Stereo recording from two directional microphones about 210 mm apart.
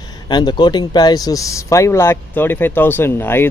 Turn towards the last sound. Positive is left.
turn(degrees=10)  # may be behind; listen again after turning